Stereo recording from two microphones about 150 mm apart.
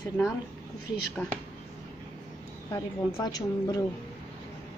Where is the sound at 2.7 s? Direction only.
25° left (ahead or behind).